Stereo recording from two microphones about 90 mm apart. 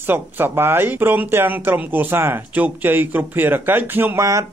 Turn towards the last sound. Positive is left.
turn(degrees=-30)  # may be behind; listen again after turning